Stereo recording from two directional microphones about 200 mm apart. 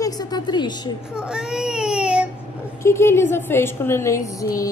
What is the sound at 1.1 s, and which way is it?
Speech, 5° right (ahead or behind).